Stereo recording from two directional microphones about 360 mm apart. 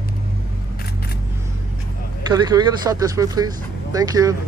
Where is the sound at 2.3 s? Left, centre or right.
Centre.